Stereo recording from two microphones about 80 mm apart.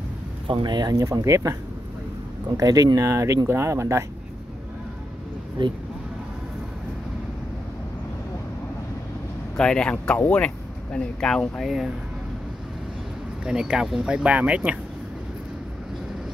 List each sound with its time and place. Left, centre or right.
0.5 s speech: right
0.9 s speech: right
9.6 s speech: centre
10.1 s speech: left
10.4 s speech: centre
11.6 s speech: centre
13.5 s speech: centre